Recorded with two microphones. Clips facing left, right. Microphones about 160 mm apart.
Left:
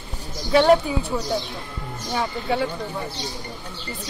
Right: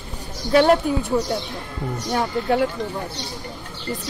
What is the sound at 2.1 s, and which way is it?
Speech, 10° right (ahead or behind).